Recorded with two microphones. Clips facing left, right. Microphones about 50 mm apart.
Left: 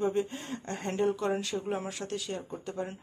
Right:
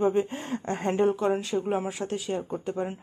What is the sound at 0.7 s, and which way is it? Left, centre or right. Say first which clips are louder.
Speech: right 5 dB; right.